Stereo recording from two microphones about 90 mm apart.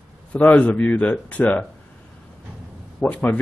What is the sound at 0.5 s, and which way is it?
Speech, 15° left (ahead or behind).